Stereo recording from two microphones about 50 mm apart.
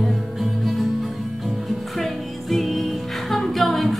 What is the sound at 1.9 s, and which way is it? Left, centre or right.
Music, centre.